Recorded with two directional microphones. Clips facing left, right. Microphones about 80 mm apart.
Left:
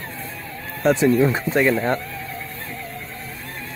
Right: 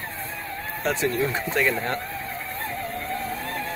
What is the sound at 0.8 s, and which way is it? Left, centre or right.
Speech, centre.